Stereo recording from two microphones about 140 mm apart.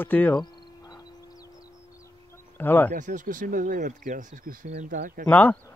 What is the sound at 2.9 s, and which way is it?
Speech, 65° right (ahead or behind).